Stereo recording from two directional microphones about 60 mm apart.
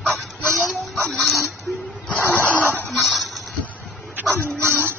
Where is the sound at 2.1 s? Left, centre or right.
Left.